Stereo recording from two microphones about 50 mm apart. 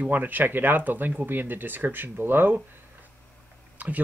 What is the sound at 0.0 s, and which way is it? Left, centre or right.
Speech, right.